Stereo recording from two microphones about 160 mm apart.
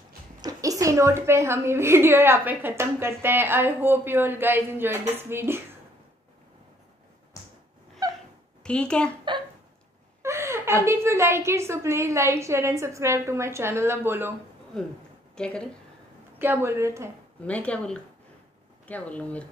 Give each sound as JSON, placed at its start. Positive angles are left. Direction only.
{"t": 0.4, "sound": "a woman's voice", "side_deg": -20}
{"t": 8.6, "sound": "speech", "side_deg": 5}
{"t": 10.2, "sound": "a woman's voice", "side_deg": -15}
{"t": 15.3, "sound": "speech", "side_deg": 5}
{"t": 16.3, "sound": "a woman's voice", "side_deg": -15}
{"t": 17.5, "sound": "speech", "side_deg": 10}